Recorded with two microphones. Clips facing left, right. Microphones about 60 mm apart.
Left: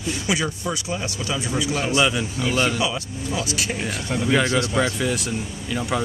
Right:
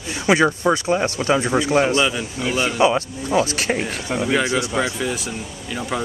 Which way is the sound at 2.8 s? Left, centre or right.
Right.